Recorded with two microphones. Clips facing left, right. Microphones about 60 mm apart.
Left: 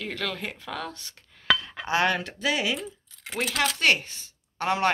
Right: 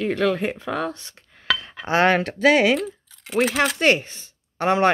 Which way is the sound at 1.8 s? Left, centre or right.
Right.